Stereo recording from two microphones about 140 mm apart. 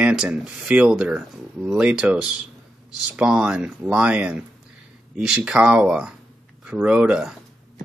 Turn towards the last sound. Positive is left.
turn(degrees=-5)  # may be behind; listen again after turning